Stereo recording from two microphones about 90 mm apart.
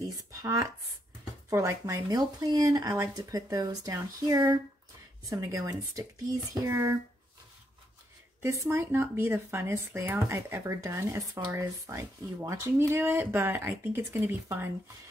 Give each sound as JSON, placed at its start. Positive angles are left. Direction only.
{"t": 0.0, "sound": "a sound", "side_deg": -40}
{"t": 1.5, "sound": "speech", "side_deg": -35}
{"t": 8.4, "sound": "speech", "side_deg": -30}